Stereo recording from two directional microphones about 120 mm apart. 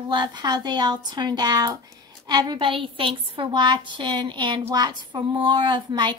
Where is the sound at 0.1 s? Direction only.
40° right (ahead or behind).